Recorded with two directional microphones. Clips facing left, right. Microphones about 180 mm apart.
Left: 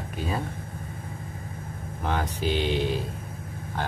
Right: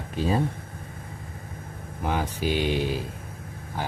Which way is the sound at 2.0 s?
10° right (ahead or behind).